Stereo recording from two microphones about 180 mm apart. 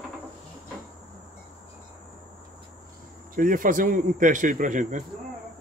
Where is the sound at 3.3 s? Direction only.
50° right (ahead or behind).